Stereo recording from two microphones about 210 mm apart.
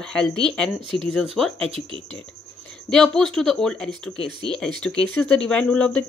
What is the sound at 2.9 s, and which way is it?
A woman's voice, centre (ahead or behind).